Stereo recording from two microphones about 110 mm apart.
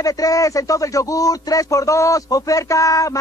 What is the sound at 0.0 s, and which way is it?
Speech, 35° left (ahead or behind).